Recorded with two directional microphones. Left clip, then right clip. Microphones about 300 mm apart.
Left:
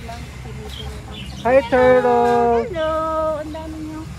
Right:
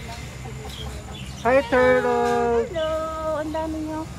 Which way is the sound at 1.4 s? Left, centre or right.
Centre.